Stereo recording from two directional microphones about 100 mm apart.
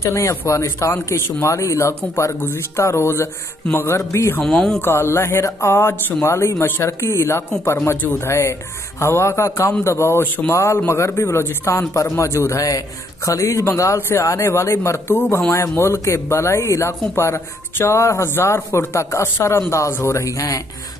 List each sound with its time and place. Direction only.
0.0 s speech: 30° left (ahead or behind)
4.4 s speech: 5° left (ahead or behind)
4.7 s speech: 25° left (ahead or behind)
10.5 s speech: 30° left (ahead or behind)